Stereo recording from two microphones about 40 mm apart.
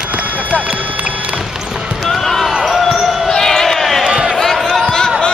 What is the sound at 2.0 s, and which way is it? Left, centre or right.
Basketball bounce, centre.